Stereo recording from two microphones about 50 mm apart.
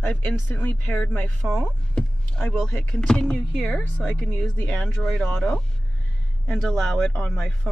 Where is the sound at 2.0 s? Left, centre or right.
Centre.